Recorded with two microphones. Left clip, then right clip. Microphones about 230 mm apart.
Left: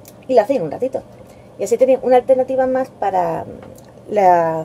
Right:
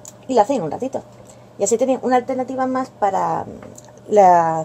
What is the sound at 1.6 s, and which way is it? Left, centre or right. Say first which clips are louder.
Speech: left 4 dB; right.